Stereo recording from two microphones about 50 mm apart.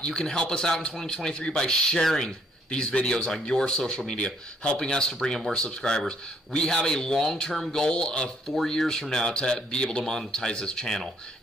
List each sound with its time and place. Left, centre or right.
0.0 s speech: centre
7.9 s speech: centre
8.5 s speech: centre